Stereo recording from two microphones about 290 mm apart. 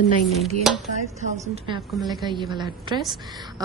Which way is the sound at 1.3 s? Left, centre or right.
Centre.